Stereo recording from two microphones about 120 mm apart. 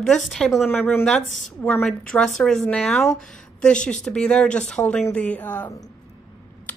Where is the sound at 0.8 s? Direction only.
15° left (ahead or behind).